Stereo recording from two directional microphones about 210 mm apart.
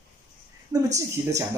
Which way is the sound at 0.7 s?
15° right (ahead or behind).